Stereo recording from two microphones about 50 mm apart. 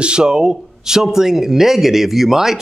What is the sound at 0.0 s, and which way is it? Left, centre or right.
Speech, centre.